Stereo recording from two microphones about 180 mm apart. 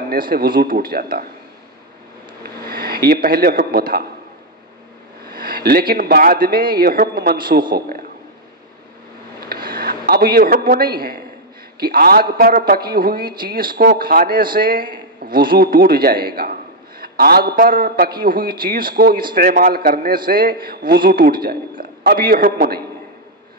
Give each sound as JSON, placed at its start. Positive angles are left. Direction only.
{"t": 0.1, "sound": "a man's voice", "side_deg": -55}
{"t": 2.6, "sound": "speech", "side_deg": -60}
{"t": 5.2, "sound": "a man's voice", "side_deg": -55}
{"t": 9.5, "sound": "a sound", "side_deg": -55}
{"t": 11.8, "sound": "a man's voice", "side_deg": -55}